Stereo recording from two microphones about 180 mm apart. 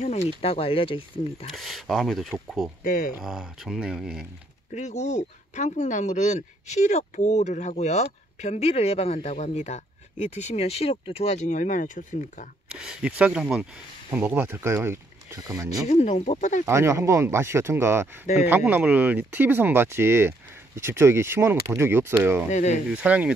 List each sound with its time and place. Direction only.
0.0 s speech: 40° left (ahead or behind)
1.5 s speech: centre (ahead or behind)
2.8 s speech: 50° left (ahead or behind)
3.1 s speech: centre (ahead or behind)
4.7 s speech: 40° left (ahead or behind)
12.7 s speech: 5° right (ahead or behind)
15.9 s speech: 40° left (ahead or behind)
16.6 s speech: 15° right (ahead or behind)
22.5 s speech: 40° left (ahead or behind)
22.9 s speech: 5° right (ahead or behind)